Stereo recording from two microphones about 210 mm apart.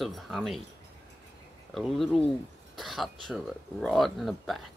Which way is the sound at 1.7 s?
Centre (ahead or behind).